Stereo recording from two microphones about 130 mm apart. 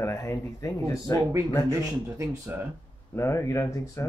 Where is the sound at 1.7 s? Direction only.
25° right (ahead or behind).